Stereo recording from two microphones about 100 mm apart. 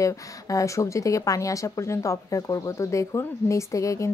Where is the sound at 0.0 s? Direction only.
35° left (ahead or behind).